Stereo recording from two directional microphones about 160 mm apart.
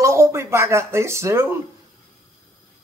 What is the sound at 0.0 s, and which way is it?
Speech, 20° right (ahead or behind).